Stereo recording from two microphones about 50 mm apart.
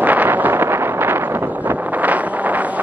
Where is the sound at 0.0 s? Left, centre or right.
Right.